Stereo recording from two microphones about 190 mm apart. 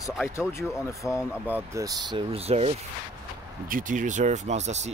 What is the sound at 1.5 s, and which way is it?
Speech, 15° right (ahead or behind).